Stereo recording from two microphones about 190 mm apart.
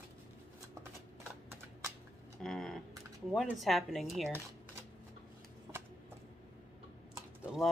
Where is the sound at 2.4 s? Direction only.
Centre (ahead or behind).